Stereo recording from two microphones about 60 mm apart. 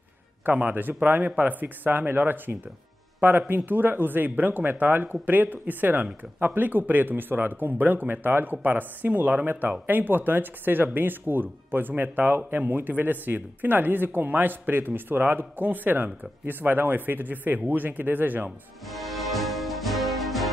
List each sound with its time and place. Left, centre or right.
0.5 s speech: right
18.9 s music: centre